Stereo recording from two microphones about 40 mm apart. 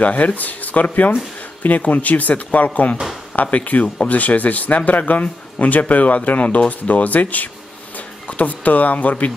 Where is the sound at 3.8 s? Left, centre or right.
Left.